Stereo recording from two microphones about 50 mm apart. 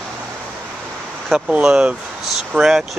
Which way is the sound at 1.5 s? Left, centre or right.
Right.